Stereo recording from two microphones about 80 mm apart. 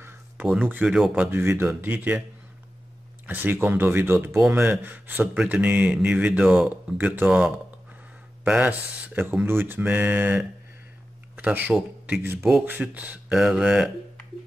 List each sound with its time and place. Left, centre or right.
0.6 s speech: right
0.8 s speech: centre
1.1 s speech: right
3.3 s speech: right
8.5 s a man's voice: centre
12.2 s speech: right
12.8 s speech: centre
13.4 s speech: centre